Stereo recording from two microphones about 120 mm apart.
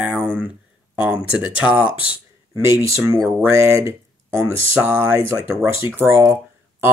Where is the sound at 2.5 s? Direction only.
25° right (ahead or behind).